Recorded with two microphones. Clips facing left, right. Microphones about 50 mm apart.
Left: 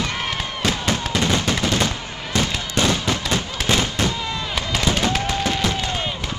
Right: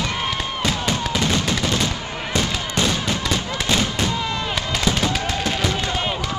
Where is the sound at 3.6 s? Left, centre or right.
Left.